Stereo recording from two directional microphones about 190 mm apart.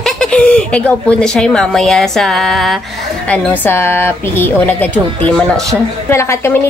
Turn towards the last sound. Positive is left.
turn(degrees=15)  # may be behind; listen again after turning